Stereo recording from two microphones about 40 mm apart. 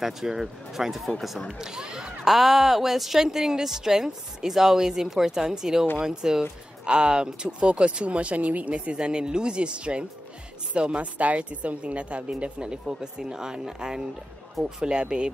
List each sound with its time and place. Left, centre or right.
0.0 s a woman's voice: centre
2.2 s a woman's voice: centre; by 8.7 s right
8.7 s a woman's voice: right